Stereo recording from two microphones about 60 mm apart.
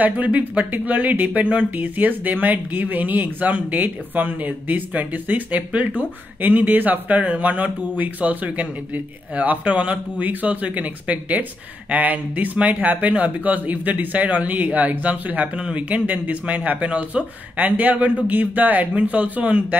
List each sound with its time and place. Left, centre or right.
0.0 s speech: right